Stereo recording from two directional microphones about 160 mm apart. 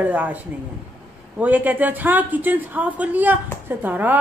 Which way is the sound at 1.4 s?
10° right (ahead or behind).